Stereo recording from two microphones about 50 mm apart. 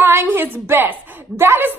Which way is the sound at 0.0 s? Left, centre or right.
Right.